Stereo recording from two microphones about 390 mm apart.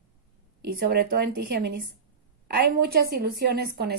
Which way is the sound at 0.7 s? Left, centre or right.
Right.